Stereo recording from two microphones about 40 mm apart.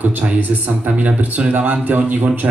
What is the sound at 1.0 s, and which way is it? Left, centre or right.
A man's voice, right.